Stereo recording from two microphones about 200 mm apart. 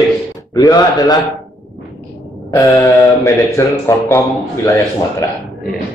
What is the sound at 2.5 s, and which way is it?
Speech, 15° left (ahead or behind).